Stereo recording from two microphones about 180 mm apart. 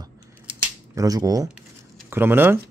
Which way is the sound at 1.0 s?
20° right (ahead or behind).